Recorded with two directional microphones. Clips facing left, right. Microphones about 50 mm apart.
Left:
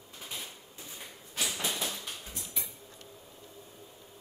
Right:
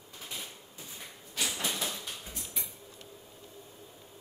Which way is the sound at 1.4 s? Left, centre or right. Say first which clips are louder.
Even; centre.